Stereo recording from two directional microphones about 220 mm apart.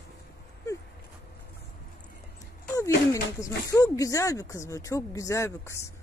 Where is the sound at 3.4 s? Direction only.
15° left (ahead or behind).